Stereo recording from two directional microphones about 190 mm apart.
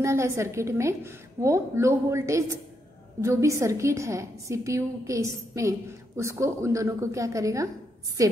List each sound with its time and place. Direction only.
0.0 s a woman's voice: 15° right (ahead or behind)